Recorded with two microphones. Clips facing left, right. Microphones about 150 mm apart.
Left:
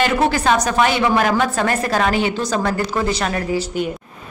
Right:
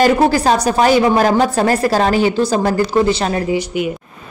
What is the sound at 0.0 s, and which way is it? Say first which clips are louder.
A woman's voice: right 5 dB; 35° right (ahead or behind).